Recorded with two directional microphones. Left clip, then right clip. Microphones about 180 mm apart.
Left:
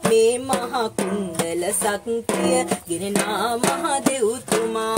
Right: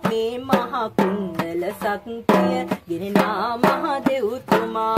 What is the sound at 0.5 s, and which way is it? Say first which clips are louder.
Music: right 2 dB; 15° right (ahead or behind).